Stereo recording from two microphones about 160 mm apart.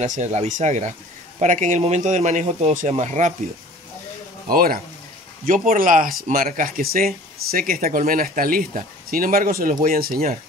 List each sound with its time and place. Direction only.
0.0 s speech: 50° right (ahead or behind)
4.5 s speech: 65° right (ahead or behind)